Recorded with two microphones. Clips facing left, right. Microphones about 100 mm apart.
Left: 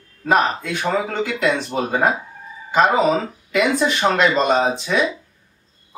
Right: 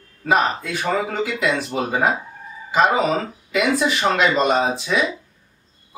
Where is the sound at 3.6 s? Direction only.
5° right (ahead or behind).